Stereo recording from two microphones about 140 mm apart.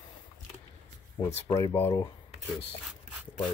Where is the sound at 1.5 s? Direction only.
20° left (ahead or behind).